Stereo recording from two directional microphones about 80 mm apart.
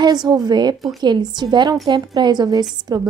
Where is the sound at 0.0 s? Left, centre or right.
Right.